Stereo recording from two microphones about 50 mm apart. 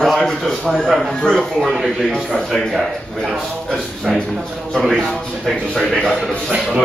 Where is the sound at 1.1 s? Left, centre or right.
Centre.